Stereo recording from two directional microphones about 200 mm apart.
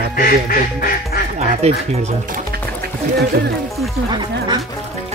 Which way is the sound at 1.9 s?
35° right (ahead or behind).